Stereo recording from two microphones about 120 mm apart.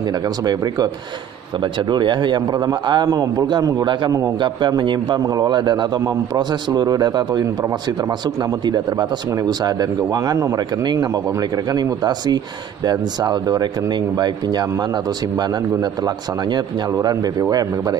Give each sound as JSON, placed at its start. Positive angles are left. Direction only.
{"t": 1.6, "sound": "a man's voice", "side_deg": -40}
{"t": 8.6, "sound": "a man's voice", "side_deg": -35}
{"t": 16.5, "sound": "a man's voice", "side_deg": -35}